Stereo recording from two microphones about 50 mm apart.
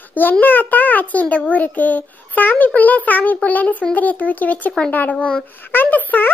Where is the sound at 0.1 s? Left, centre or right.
Left.